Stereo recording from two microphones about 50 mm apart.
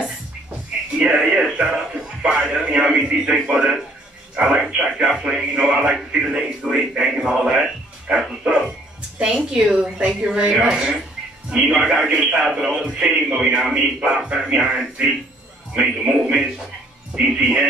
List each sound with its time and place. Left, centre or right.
0.9 s music: centre
2.2 s speech: centre
8.1 s speech: right